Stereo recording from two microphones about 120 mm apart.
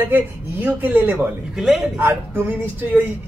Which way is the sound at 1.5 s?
5° right (ahead or behind).